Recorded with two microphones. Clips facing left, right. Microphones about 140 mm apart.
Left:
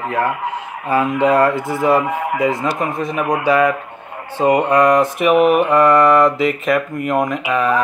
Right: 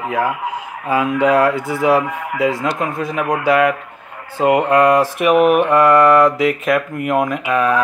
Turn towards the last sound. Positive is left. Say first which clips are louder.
# right 1 dB
turn(degrees=0)  # may be behind; listen again after turning